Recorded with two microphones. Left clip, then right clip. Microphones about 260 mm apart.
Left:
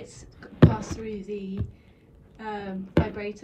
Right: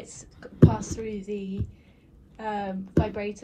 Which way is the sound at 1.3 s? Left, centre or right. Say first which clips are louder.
Right 1 dB; centre.